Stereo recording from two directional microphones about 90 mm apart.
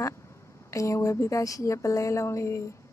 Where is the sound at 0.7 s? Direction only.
35° left (ahead or behind).